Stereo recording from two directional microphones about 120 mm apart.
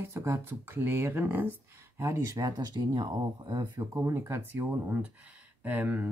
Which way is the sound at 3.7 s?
20° right (ahead or behind).